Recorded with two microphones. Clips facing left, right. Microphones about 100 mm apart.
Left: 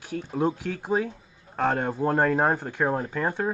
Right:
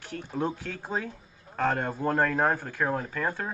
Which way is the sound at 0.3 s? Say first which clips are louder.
Left 5 dB; 15° left (ahead or behind).